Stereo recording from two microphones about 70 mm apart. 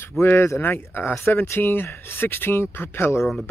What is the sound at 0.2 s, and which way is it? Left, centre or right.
Speech, left.